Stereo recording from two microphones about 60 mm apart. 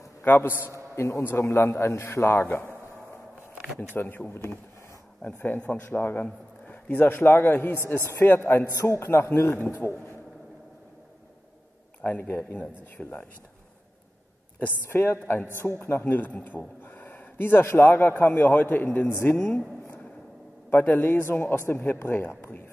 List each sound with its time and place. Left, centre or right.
0.5 s a man's voice: left
3.9 s a man's voice: left
4.3 s a man's voice: left
5.2 s a man's voice: left
12.2 s a man's voice: left
14.9 s a man's voice: left
19.0 s a man's voice: left
20.7 s a man's voice: left
21.1 s a man's voice: left